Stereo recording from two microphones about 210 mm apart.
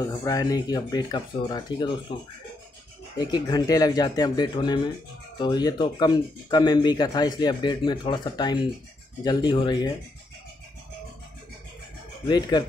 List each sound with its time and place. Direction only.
0.0 s speech: 15° left (ahead or behind)
3.2 s speech: 20° left (ahead or behind)
12.3 s speech: 20° left (ahead or behind)